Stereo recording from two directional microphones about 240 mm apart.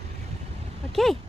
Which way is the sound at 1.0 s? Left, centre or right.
Centre.